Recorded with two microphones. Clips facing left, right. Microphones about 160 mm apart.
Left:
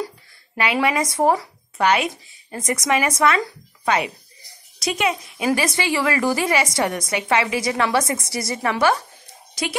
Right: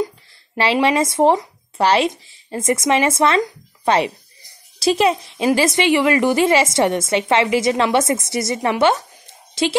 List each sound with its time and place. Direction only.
0.6 s a woman's voice: 30° right (ahead or behind)